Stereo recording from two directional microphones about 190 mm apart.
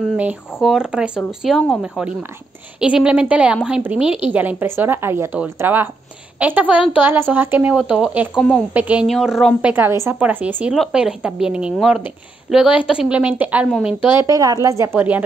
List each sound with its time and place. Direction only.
0.2 s a woman's voice: 5° right (ahead or behind)
14.1 s a woman's voice: 20° right (ahead or behind)